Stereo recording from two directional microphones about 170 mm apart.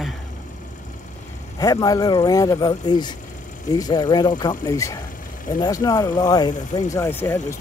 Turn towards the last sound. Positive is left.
turn(degrees=15)  # may be behind; listen again after turning